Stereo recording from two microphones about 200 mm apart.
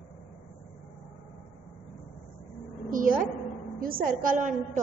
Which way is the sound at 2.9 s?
45° right (ahead or behind).